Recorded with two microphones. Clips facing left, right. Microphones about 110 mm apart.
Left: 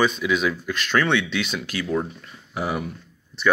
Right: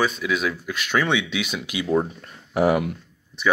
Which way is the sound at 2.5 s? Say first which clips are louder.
Right 7 dB; 85° right.